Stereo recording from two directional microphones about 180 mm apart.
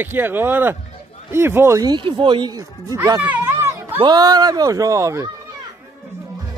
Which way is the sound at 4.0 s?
20° right (ahead or behind).